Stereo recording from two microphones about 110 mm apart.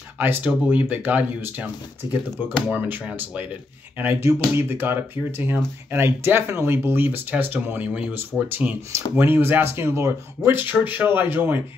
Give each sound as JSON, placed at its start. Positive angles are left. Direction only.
{"t": 0.2, "sound": "speech", "side_deg": -15}
{"t": 2.7, "sound": "speech", "side_deg": -15}